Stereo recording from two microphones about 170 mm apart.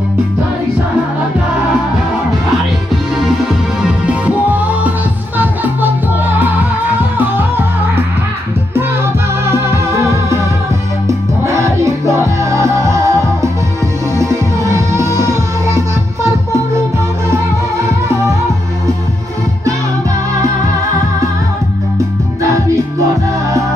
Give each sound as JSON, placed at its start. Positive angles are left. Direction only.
{"t": 4.0, "sound": "music", "side_deg": -10}
{"t": 9.5, "sound": "music", "side_deg": -15}